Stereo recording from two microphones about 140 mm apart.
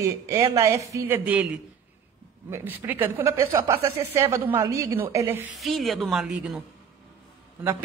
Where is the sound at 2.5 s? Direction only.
15° right (ahead or behind).